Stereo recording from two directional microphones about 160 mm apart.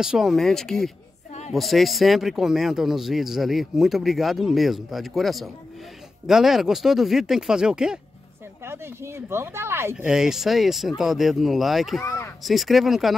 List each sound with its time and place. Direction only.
0.0 s speech: centre (ahead or behind)
8.6 s speech: 15° right (ahead or behind)
12.0 s a sound: 15° left (ahead or behind)
12.4 s speech: centre (ahead or behind)